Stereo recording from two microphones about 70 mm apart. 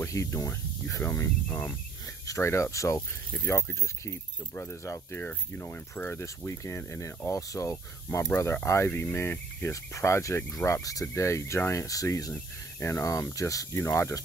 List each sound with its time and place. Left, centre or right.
0.0 s speech: left
4.0 s speech: left
5.2 s speech: left
6.2 s speech: left
8.3 s speech: left